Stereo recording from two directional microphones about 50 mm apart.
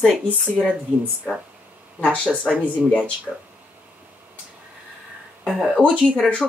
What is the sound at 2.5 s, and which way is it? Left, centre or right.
Speech, centre.